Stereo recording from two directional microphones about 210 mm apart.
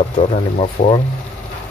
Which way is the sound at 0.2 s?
25° left (ahead or behind).